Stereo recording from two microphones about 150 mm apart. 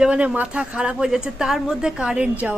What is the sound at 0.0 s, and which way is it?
A woman's voice, 5° right (ahead or behind).